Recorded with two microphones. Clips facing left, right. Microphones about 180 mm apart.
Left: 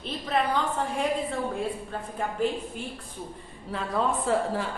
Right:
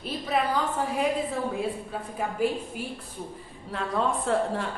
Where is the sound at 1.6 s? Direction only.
5° right (ahead or behind).